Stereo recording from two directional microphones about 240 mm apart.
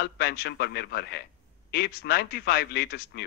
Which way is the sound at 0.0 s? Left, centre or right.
Left.